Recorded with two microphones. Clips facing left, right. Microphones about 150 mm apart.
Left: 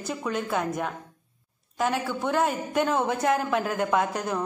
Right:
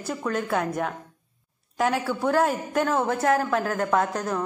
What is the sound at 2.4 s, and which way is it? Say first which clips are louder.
A woman's voice: right 1 dB; 5° left (ahead or behind).